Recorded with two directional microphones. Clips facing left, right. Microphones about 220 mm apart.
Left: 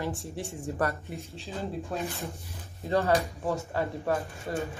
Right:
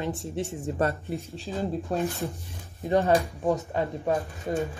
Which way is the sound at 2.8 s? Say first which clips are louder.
Right 3 dB; 15° right (ahead or behind).